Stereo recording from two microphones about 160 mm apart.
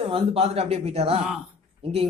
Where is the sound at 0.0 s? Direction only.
40° right (ahead or behind).